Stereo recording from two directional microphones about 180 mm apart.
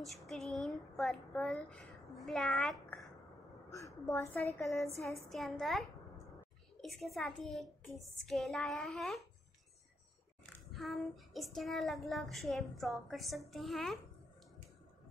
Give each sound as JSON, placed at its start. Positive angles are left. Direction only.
{"t": 0.0, "sound": "child singing", "side_deg": 0}
{"t": 3.7, "sound": "a woman's voice", "side_deg": 15}
{"t": 5.3, "sound": "child singing", "side_deg": 0}
{"t": 10.4, "sound": "child singing", "side_deg": 0}